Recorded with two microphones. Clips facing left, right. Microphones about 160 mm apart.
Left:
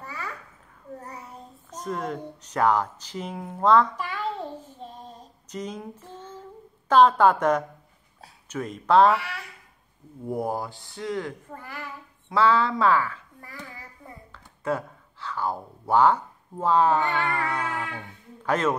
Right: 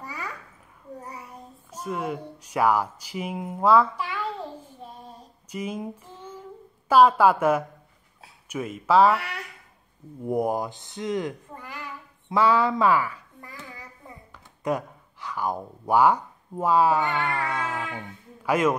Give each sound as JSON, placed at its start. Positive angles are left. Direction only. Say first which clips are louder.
{"t": 0.0, "sound": "babbling", "louder": "right 1 dB", "side_deg": -15}
{"t": 1.7, "sound": "speech", "louder": "right 1 dB", "side_deg": -10}
{"t": 5.5, "sound": "a sound", "louder": "right 3 dB", "side_deg": -10}
{"t": 6.9, "sound": "speech", "louder": "even", "side_deg": -10}
{"t": 10.2, "sound": "speech", "louder": "right 3 dB", "side_deg": -20}